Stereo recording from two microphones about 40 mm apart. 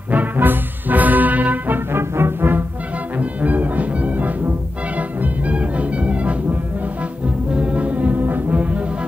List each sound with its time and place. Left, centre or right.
0.1 s music: right
1.9 s music: right
3.2 s music: right
7.5 s brass instrument: right
8.2 s brass instrument: right